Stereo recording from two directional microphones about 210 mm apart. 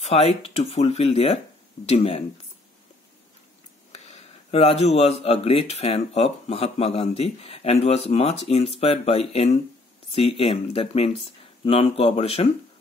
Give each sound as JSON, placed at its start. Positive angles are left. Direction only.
{"t": 0.0, "sound": "speech", "side_deg": 30}
{"t": 3.9, "sound": "speech", "side_deg": 30}